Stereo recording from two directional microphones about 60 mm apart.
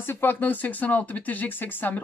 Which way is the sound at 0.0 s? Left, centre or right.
Left.